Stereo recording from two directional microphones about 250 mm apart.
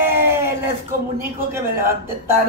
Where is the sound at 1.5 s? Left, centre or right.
Centre.